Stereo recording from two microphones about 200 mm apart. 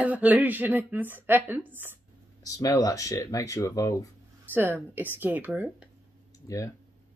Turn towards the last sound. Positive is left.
turn(degrees=-5)  # may be behind; listen again after turning